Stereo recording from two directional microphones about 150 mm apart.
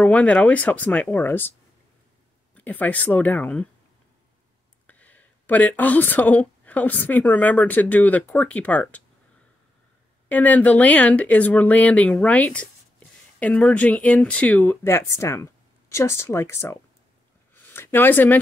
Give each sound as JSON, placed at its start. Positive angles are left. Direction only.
{"t": 0.0, "sound": "speech", "side_deg": 10}
{"t": 2.5, "sound": "speech", "side_deg": 10}
{"t": 4.8, "sound": "speech", "side_deg": 10}
{"t": 10.2, "sound": "speech", "side_deg": 10}